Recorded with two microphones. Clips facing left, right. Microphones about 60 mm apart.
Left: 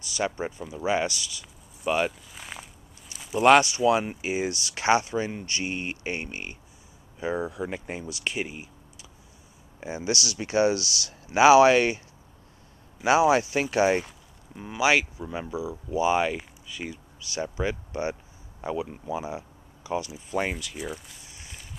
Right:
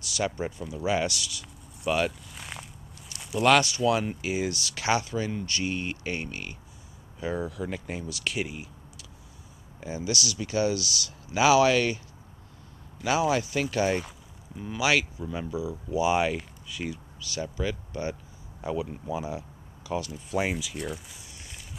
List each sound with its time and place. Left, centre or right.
0.1 s speech: centre
0.5 s speech: centre
3.1 s a sound: centre
3.4 s speech: left
7.2 s speech: centre
9.8 s speech: left
13.0 s speech: left
15.6 s speech: centre
17.2 s speech: left
18.6 s speech: centre
20.2 s speech: centre